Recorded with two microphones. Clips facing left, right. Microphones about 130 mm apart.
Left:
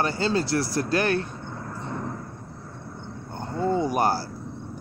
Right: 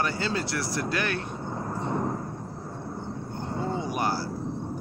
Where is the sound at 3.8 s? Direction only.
45° left (ahead or behind).